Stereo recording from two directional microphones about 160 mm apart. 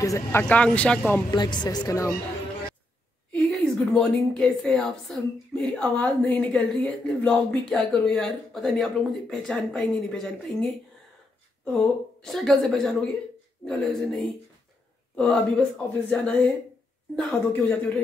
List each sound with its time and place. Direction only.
0.0 s speech: 15° left (ahead or behind)
1.3 s a woman's voice: 30° left (ahead or behind)
3.3 s a woman's voice: 5° left (ahead or behind)
12.3 s a woman's voice: centre (ahead or behind)